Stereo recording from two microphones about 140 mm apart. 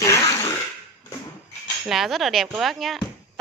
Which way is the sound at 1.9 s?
Centre (ahead or behind).